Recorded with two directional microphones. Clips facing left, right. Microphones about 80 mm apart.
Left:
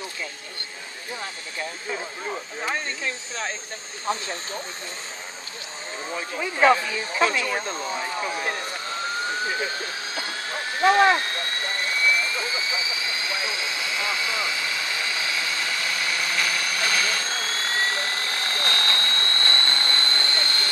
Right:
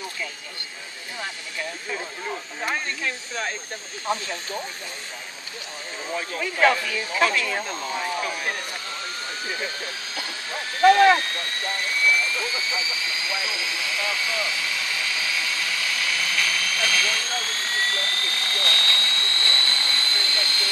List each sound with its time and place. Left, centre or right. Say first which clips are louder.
6.3 s speech: left 2 dB; centre
10.9 s speech: right 2 dB; left
13.7 s vehicle: even; centre; by 17.7 s left
17.7 s helicopter: even; left